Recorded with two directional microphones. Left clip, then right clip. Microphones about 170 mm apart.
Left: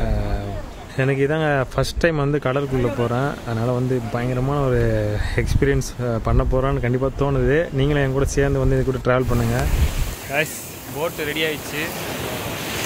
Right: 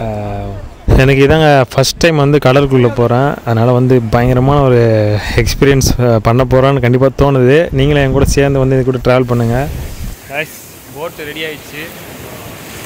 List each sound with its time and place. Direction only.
0.9 s speech: 65° right (ahead or behind)
11.0 s speech: 5° right (ahead or behind)